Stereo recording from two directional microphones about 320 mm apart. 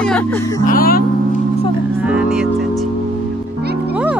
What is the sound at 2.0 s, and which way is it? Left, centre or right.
Speech, centre.